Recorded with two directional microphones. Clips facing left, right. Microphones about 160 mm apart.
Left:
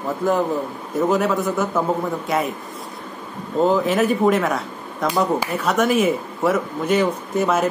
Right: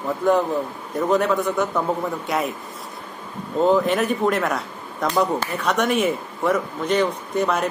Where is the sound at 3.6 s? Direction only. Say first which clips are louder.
Left 1 dB; centre (ahead or behind).